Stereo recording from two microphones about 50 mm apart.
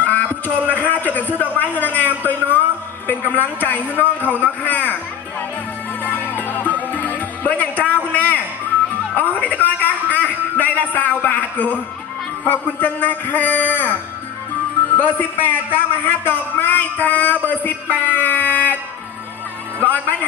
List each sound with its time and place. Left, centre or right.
0.0 s a sound: left
0.7 s a man's voice: left
6.0 s music: left
7.8 s a sound: left
11.3 s music: left
12.4 s a man's voice: left
15.0 s a man's voice: left
17.0 s music: left
19.8 s a man's voice: left